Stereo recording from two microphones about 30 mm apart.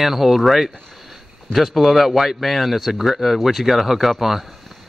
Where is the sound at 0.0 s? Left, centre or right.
Centre.